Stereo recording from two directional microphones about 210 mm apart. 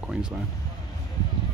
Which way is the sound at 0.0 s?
5° right (ahead or behind).